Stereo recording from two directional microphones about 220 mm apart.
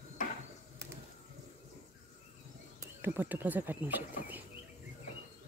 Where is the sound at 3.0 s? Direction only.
10° right (ahead or behind).